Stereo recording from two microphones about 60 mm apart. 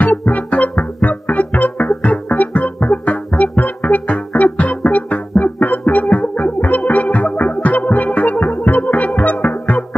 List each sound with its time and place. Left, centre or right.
0.0 s music: left